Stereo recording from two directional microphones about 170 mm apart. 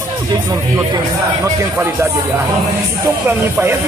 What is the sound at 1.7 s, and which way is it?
Speech, 15° right (ahead or behind).